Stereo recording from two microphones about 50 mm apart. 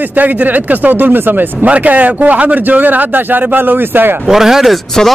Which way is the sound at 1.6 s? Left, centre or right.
Right.